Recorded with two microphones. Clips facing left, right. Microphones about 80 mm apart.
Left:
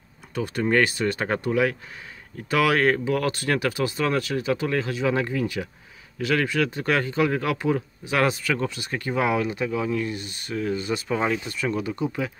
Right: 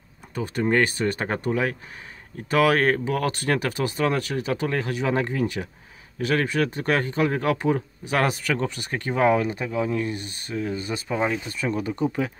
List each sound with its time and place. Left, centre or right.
0.4 s speech: right
10.5 s speech: centre
11.4 s speech: right